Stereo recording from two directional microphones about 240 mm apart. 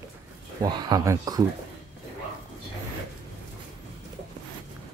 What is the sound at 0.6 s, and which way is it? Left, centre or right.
Speech, centre.